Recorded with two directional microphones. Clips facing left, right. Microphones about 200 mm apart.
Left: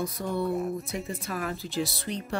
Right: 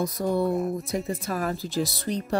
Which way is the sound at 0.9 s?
40° right (ahead or behind).